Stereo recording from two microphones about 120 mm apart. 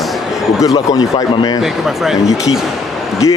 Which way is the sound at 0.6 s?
30° left (ahead or behind).